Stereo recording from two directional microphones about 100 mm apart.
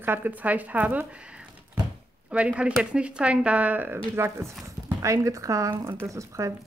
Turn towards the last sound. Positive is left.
turn(degrees=-30)  # may be behind; listen again after turning